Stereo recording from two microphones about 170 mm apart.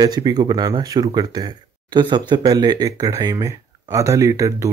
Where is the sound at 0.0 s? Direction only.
25° right (ahead or behind).